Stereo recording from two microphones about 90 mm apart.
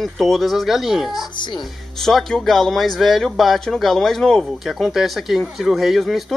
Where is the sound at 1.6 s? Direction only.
Centre (ahead or behind).